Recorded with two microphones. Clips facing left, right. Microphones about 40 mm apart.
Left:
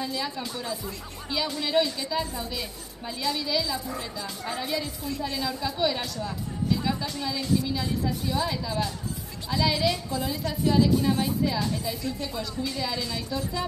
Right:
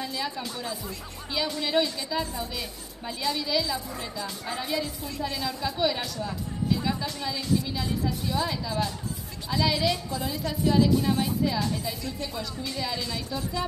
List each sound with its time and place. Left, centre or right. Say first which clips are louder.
0.0 s a woman's voice: left 1 dB; centre